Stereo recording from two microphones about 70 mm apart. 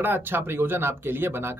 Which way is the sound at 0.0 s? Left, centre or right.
Right.